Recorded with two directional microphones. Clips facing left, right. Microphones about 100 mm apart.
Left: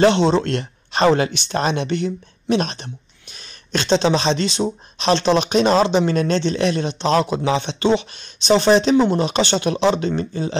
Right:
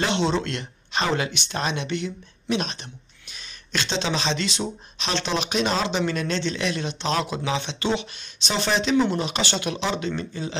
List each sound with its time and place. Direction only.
0.0 s speech: 35° left (ahead or behind)